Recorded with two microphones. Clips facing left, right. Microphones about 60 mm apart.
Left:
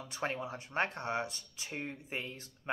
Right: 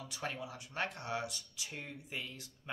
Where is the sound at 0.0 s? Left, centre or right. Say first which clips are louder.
Left 5 dB; left.